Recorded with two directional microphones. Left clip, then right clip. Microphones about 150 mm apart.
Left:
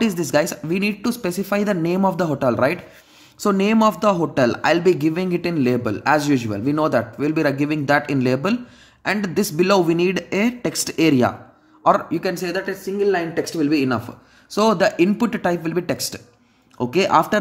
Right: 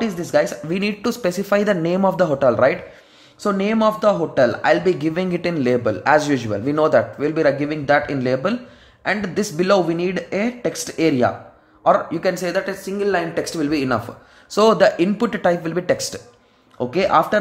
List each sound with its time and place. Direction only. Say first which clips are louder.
0.0 s speech: right 1 dB; 35° left (ahead or behind)
0.7 s a man's voice: right 1 dB; 20° left (ahead or behind)
12.2 s a man's voice: right 3 dB; 15° left (ahead or behind)